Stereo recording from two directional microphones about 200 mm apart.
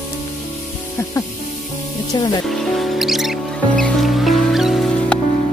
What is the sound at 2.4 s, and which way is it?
Music, centre (ahead or behind).